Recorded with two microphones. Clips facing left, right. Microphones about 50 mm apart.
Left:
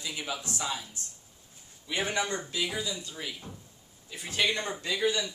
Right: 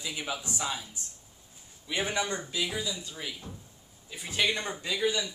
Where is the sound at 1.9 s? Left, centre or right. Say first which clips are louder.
Even; centre.